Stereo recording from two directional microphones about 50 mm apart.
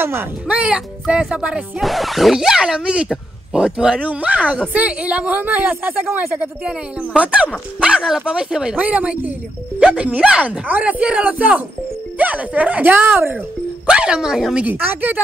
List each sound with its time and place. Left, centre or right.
0.0 s speech: right
0.5 s a woman's voice: right
1.8 s a woman's voice: centre; by 7.4 s right
7.8 s speech: centre
8.7 s a woman's voice: right
12.8 s speech: right
13.8 s speech: centre
14.9 s a woman's voice: right